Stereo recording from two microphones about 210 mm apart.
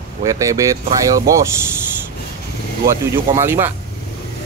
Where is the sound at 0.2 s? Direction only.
15° right (ahead or behind).